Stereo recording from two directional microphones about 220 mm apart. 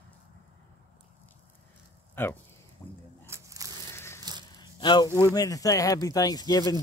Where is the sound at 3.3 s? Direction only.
15° right (ahead or behind).